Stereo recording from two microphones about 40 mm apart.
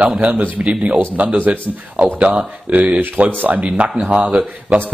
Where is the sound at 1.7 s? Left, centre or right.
Right.